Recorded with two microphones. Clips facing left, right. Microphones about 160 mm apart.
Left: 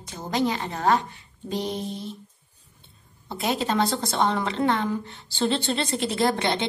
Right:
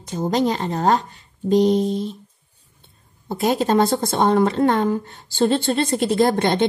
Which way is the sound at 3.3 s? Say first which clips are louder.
Right 7 dB; 45° right (ahead or behind).